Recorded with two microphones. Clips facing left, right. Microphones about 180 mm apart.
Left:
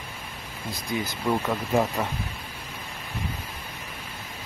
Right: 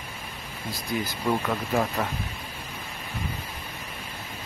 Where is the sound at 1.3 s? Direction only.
5° left (ahead or behind).